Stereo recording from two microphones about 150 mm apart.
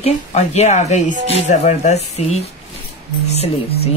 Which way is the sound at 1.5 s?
50° left (ahead or behind).